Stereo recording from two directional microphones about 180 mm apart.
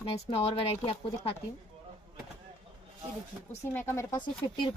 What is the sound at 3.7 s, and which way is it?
Speech, 15° left (ahead or behind).